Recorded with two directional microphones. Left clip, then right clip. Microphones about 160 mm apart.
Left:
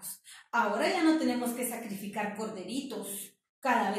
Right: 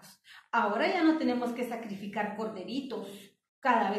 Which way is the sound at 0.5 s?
15° left (ahead or behind).